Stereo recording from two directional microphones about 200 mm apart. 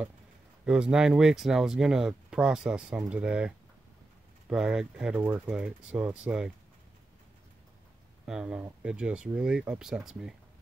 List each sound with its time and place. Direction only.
0.7 s speech: 5° right (ahead or behind)
8.3 s speech: 5° right (ahead or behind)